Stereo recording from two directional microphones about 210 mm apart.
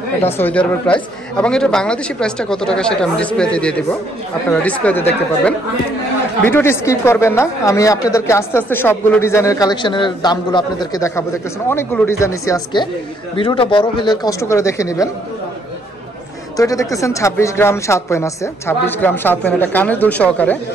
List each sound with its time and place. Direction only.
0.2 s a woman's voice: 10° left (ahead or behind)
16.5 s a woman's voice: 15° left (ahead or behind)